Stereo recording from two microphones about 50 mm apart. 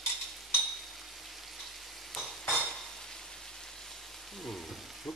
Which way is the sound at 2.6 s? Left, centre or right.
Centre.